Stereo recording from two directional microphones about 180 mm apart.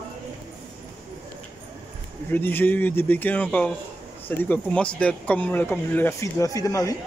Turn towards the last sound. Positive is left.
turn(degrees=20)  # may be behind; listen again after turning